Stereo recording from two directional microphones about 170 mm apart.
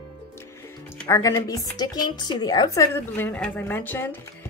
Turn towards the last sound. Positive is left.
turn(degrees=10)  # may be behind; listen again after turning